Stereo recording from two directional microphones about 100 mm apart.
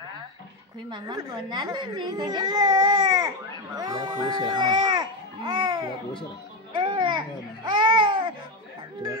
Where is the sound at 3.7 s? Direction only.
40° right (ahead or behind).